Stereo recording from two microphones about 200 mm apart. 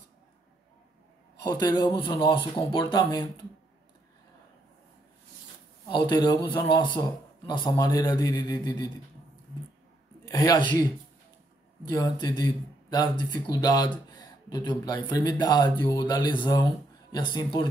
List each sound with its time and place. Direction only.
1.5 s a man's voice: 20° left (ahead or behind)
5.9 s a man's voice: 20° left (ahead or behind)
10.3 s a man's voice: 20° left (ahead or behind)